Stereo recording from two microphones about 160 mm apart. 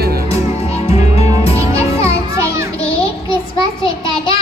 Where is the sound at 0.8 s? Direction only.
40° left (ahead or behind).